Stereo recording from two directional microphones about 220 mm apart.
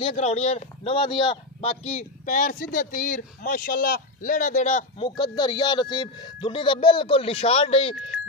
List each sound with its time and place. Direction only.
0.0 s speech: 30° left (ahead or behind)